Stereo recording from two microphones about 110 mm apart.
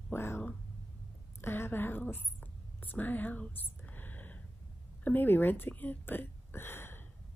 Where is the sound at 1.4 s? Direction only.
20° left (ahead or behind).